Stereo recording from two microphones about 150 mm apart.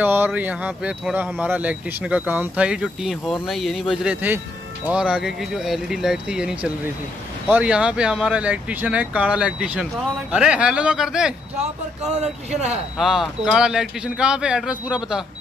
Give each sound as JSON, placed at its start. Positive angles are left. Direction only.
{"t": 0.0, "sound": "a man's voice", "side_deg": -15}
{"t": 12.2, "sound": "speech", "side_deg": -50}
{"t": 12.9, "sound": "a man's voice", "side_deg": 0}